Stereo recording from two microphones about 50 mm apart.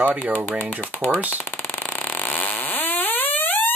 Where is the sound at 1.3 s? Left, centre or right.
Left.